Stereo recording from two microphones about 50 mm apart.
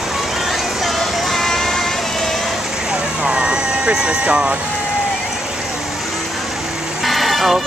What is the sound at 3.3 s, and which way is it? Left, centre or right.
Vehicle, centre.